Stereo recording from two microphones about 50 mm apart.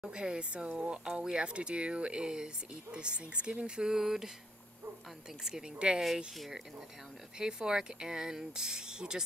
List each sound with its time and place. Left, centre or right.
0.1 s speech: centre
5.4 s speech: centre
6.3 s speech: centre
7.3 s speech: centre